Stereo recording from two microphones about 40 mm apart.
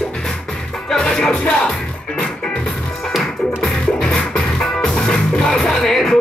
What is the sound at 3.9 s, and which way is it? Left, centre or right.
Music, centre.